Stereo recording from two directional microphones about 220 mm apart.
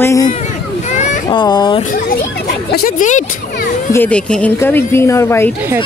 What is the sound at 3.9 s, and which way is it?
Speech, 5° left (ahead or behind).